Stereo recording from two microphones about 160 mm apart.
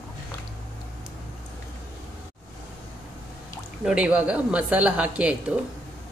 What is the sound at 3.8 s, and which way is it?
Speech, 5° right (ahead or behind).